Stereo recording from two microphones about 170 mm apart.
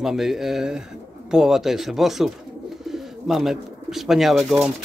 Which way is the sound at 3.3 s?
Centre (ahead or behind).